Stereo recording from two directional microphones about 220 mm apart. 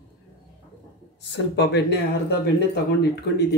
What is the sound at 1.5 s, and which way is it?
Speech, 50° left (ahead or behind).